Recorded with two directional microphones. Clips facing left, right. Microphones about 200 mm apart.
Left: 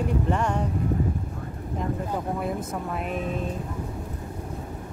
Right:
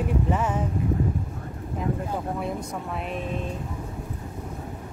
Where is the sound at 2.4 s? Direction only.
Centre (ahead or behind).